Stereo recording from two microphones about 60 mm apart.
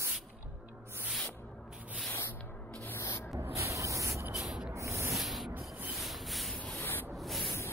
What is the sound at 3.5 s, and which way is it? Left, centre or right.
Spray, right.